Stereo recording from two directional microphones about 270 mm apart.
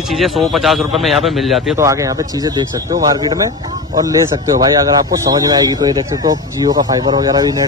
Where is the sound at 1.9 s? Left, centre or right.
Centre.